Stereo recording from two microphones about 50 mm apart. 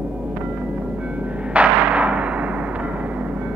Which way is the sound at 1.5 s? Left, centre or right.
Right.